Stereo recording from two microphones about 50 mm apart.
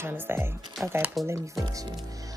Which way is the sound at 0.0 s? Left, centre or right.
Right.